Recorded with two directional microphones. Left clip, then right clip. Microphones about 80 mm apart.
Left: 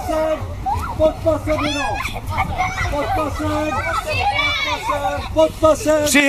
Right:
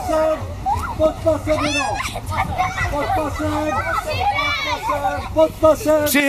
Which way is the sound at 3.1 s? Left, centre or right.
Centre.